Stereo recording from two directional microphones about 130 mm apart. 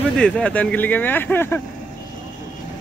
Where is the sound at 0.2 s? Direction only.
5° left (ahead or behind).